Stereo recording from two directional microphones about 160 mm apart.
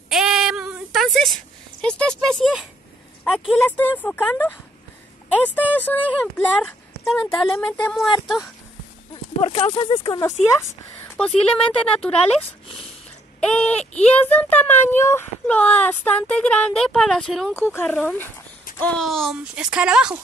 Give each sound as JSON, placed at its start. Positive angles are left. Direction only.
{"t": 0.1, "sound": "a sound", "side_deg": -5}
{"t": 2.2, "sound": "speech", "side_deg": 0}
{"t": 3.6, "sound": "speech", "side_deg": 10}
{"t": 9.4, "sound": "speech", "side_deg": 40}
{"t": 10.0, "sound": "speech", "side_deg": 20}
{"t": 11.1, "sound": "speech", "side_deg": 5}
{"t": 13.4, "sound": "speech", "side_deg": 5}
{"t": 17.6, "sound": "speech", "side_deg": 15}